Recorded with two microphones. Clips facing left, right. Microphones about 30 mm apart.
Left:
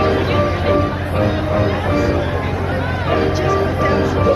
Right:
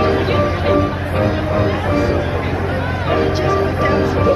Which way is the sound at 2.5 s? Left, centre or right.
Right.